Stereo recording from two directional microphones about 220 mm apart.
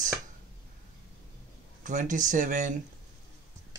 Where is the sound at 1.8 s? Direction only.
35° right (ahead or behind).